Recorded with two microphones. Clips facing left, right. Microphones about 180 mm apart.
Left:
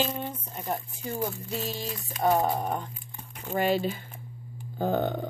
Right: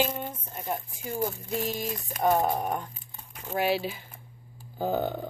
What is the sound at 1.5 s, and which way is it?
Speech, 15° right (ahead or behind).